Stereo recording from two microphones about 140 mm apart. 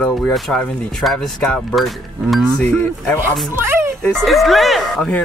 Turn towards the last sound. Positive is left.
turn(degrees=0)  # may be behind; listen again after turning